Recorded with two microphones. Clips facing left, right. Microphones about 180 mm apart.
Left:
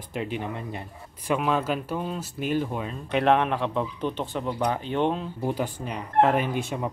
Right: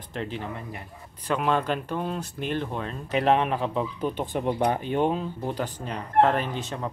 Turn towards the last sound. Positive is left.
turn(degrees=10)  # may be behind; listen again after turning